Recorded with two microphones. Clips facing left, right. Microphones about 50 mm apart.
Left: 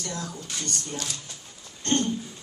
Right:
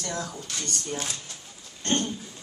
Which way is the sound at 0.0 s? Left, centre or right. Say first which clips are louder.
Right 2 dB; right.